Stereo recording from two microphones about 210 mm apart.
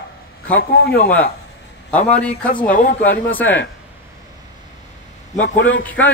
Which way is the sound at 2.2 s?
5° left (ahead or behind).